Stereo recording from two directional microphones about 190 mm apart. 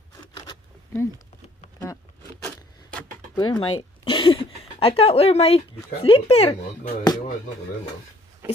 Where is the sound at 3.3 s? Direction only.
25° left (ahead or behind).